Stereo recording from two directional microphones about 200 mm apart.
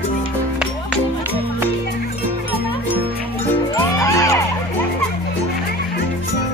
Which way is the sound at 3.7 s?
15° left (ahead or behind).